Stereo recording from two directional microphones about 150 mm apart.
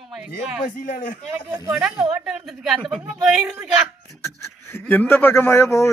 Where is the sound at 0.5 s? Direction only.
60° left (ahead or behind).